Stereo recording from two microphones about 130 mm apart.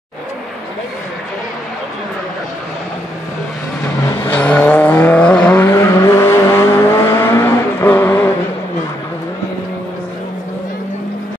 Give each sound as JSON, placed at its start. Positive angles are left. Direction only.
{"t": 4.2, "sound": "vehicle", "side_deg": 15}
{"t": 5.8, "sound": "vehicle", "side_deg": 20}